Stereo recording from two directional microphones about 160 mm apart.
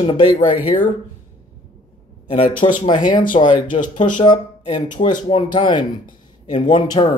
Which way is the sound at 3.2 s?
55° left (ahead or behind).